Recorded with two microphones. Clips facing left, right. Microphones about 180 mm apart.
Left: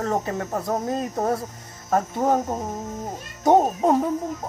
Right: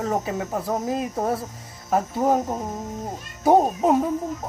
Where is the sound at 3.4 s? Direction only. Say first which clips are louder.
Even; 5° right (ahead or behind).